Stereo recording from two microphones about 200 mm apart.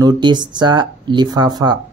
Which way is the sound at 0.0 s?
20° right (ahead or behind).